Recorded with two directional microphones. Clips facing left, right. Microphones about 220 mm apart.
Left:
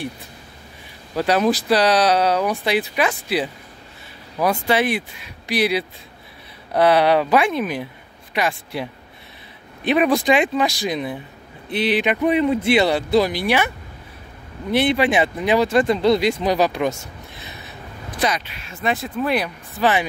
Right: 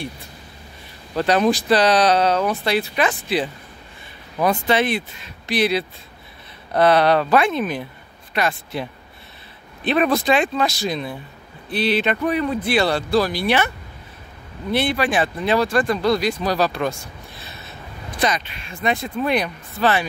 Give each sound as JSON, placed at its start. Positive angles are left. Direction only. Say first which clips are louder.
{"t": 1.1, "sound": "speech", "louder": "even", "side_deg": 10}
{"t": 9.8, "sound": "speech", "louder": "left 1 dB", "side_deg": 15}
{"t": 14.7, "sound": "speech", "louder": "left 3 dB", "side_deg": 20}
{"t": 19.7, "sound": "speech", "louder": "left 1 dB", "side_deg": 15}